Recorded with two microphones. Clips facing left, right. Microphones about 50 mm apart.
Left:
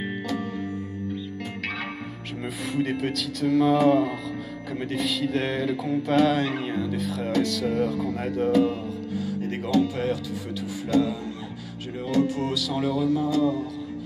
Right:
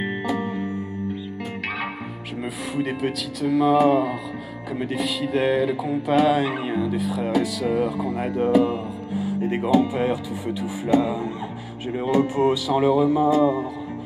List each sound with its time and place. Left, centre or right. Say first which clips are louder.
0.0 s music: right 4 dB; right
2.7 s speech: right 1 dB; centre
4.7 s a sound: right 2 dB; centre; by 11.1 s right
12.0 s speech: right 4 dB; right